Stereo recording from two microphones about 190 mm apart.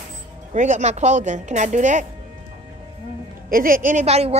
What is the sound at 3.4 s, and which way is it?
Speech, 45° right (ahead or behind).